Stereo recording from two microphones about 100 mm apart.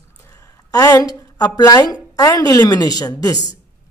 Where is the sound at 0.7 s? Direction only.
35° left (ahead or behind).